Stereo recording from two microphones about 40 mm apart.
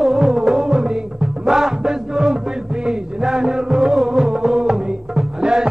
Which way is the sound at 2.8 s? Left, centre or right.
Centre.